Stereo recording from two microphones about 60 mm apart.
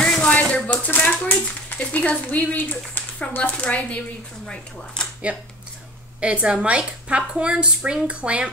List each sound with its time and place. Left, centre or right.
0.0 s rattle: centre
1.7 s speech: left
5.3 s a woman's voice: right